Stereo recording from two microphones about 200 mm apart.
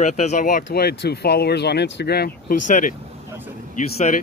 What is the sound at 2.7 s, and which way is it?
Speech, 40° left (ahead or behind).